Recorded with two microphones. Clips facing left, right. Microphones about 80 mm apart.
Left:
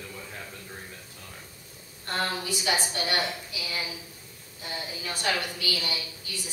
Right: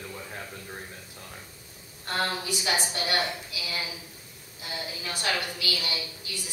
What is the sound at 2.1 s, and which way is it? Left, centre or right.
Speech, centre.